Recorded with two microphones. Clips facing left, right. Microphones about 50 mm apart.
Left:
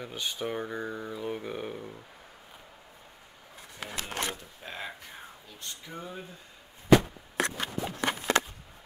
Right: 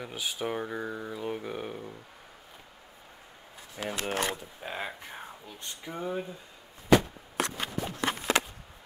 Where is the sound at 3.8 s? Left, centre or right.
Right.